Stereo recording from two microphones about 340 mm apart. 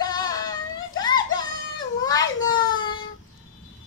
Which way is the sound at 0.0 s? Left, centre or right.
Centre.